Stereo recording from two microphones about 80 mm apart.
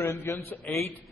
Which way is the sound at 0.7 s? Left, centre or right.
Centre.